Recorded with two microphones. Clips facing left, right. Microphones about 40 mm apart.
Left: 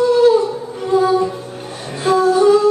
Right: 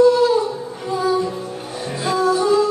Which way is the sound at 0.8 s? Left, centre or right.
Left.